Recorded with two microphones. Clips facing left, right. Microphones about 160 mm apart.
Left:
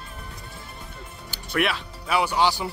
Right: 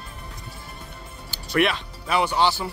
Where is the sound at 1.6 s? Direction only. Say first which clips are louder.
Right 3 dB; 5° left (ahead or behind).